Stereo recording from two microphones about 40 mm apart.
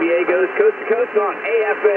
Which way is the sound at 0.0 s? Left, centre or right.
Centre.